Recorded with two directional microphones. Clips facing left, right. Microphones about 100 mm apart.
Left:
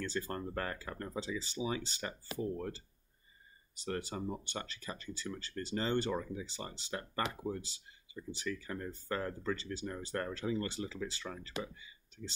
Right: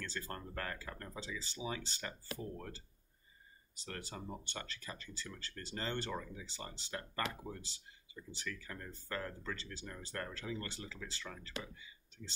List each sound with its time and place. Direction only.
0.0 s speech: 15° left (ahead or behind)